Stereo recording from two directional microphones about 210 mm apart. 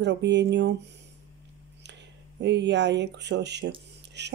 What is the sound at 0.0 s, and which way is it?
Speech, 55° right (ahead or behind).